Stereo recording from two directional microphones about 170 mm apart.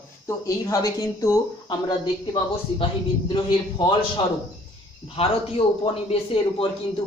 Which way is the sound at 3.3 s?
25° left (ahead or behind).